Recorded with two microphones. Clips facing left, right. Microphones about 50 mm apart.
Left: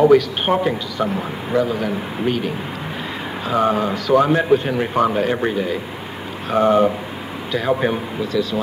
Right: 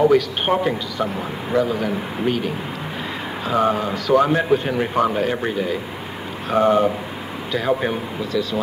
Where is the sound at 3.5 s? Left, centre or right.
Centre.